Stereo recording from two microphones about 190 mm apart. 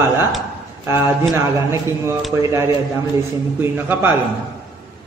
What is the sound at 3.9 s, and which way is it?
Speech, 10° right (ahead or behind).